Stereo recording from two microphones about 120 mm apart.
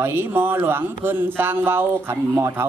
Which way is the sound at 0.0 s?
20° right (ahead or behind).